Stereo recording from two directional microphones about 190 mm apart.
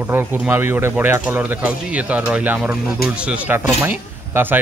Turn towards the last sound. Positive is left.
turn(degrees=-10)  # may be behind; listen again after turning